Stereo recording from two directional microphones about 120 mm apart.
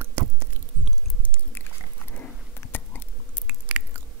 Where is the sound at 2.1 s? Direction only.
15° left (ahead or behind).